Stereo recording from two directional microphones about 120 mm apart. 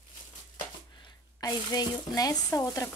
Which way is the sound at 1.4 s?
35° left (ahead or behind).